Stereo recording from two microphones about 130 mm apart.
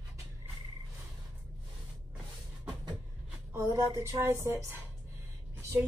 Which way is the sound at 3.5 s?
20° right (ahead or behind).